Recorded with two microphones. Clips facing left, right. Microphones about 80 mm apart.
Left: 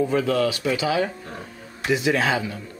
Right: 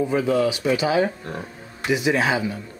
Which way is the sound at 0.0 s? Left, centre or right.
Centre.